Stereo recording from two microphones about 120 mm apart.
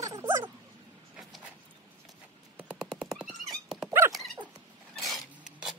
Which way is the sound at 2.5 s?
10° right (ahead or behind).